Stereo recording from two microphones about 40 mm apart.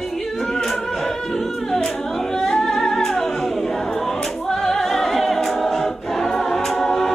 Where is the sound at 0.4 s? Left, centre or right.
Centre.